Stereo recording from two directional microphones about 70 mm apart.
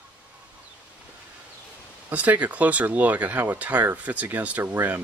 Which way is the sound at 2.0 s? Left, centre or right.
Right.